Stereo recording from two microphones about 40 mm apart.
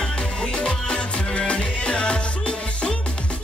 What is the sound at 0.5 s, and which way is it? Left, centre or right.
Music, left.